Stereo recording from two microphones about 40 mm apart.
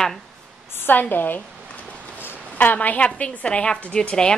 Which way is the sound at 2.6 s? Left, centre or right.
Left.